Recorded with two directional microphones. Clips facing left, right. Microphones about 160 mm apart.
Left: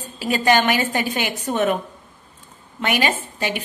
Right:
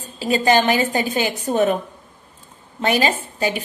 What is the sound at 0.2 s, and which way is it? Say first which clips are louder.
A woman's voice: right 1 dB; 30° right (ahead or behind).